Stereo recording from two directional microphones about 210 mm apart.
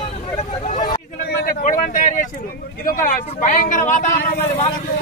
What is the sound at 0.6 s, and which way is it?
Vehicle, 35° left (ahead or behind).